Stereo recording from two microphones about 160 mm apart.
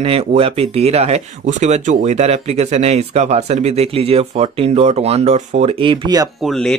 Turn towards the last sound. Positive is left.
turn(degrees=0)  # may be behind; listen again after turning